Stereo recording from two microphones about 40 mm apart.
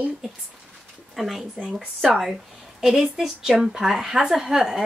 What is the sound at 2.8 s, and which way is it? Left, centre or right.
Speech, centre.